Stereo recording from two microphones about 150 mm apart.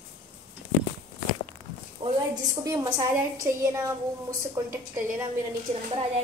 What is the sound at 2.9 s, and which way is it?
A woman's voice, 15° right (ahead or behind).